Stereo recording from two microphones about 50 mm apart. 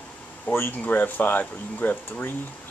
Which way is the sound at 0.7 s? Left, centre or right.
Left.